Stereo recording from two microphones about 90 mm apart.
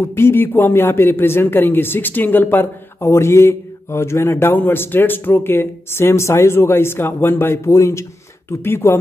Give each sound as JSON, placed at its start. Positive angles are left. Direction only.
{"t": 0.0, "sound": "speech", "side_deg": 25}